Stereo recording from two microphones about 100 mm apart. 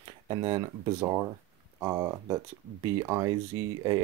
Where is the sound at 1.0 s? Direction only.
25° right (ahead or behind).